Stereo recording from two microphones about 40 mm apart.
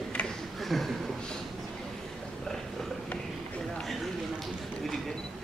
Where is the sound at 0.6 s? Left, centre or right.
Centre.